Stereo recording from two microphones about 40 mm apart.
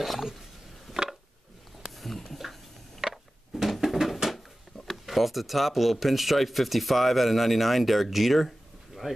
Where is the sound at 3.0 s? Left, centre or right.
Centre.